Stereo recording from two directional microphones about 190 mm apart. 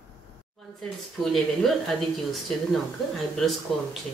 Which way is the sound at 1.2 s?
Centre (ahead or behind).